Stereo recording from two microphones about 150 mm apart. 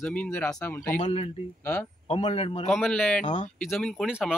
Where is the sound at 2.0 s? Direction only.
40° left (ahead or behind).